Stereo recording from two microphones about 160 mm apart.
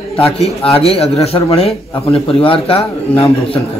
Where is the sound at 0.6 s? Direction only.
40° left (ahead or behind).